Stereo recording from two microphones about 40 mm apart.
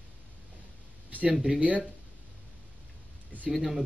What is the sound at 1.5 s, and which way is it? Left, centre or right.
Speech, right.